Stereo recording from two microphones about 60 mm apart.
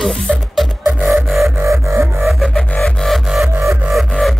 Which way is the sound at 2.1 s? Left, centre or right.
Centre.